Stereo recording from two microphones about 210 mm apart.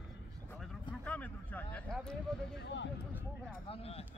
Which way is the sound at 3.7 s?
30° left (ahead or behind).